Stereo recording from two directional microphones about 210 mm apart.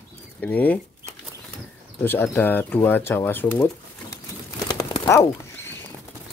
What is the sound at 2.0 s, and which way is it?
Speech, 10° left (ahead or behind).